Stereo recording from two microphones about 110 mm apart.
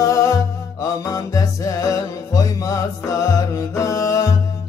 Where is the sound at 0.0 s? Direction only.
30° left (ahead or behind).